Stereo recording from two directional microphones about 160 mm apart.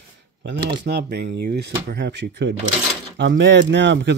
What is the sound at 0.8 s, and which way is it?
Speech, 90° right.